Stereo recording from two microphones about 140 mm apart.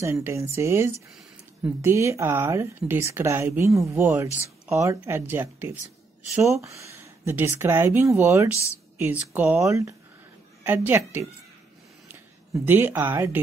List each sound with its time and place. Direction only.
0.0 s speech: 20° right (ahead or behind)